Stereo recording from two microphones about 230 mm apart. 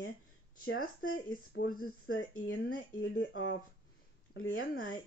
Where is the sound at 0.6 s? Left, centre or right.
Left.